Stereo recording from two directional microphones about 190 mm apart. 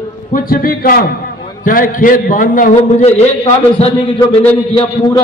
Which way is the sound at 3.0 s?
35° left (ahead or behind).